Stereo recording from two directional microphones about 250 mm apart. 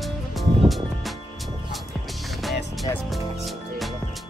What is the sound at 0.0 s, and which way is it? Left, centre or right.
Music, centre.